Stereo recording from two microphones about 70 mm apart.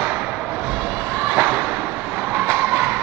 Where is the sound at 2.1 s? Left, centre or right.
Right.